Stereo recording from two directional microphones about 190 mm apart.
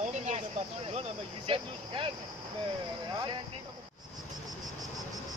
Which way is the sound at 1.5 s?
25° right (ahead or behind).